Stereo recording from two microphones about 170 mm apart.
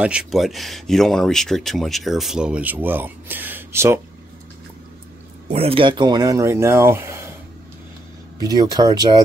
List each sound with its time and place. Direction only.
0.0 s speech: 5° right (ahead or behind)
5.5 s speech: 35° right (ahead or behind); by 7.3 s 15° right (ahead or behind)
8.5 s speech: 20° right (ahead or behind)